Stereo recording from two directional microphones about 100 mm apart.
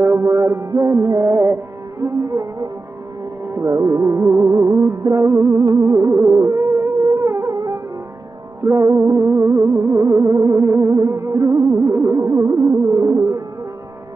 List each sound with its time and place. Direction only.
0.0 s music: 30° right (ahead or behind)